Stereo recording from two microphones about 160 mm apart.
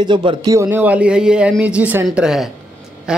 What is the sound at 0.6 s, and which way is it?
Speech, 15° right (ahead or behind).